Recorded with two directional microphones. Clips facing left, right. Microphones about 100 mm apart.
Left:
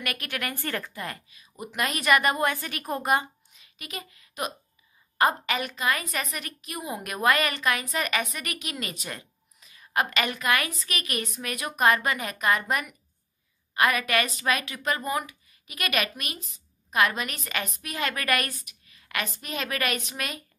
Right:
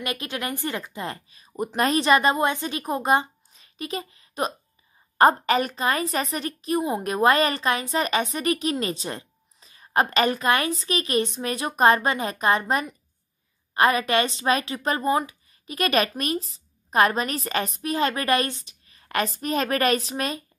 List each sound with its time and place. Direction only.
0.0 s a woman's voice: 20° right (ahead or behind)
1.4 s a woman's voice: 35° right (ahead or behind)